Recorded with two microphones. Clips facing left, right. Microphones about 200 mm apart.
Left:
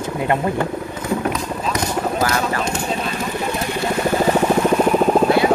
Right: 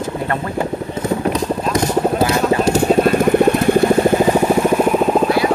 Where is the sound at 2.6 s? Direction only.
40° right (ahead or behind).